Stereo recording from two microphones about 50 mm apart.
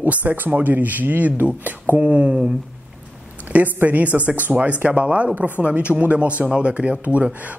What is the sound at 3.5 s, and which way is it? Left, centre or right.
Speech, right.